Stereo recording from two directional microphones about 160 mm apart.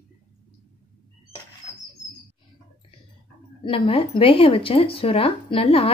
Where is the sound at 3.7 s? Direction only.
35° left (ahead or behind).